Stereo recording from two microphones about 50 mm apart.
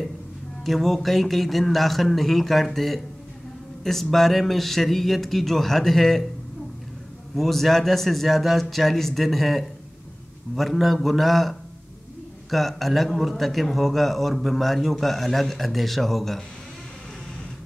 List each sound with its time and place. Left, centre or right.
0.7 s a man's voice: centre
7.3 s a man's voice: centre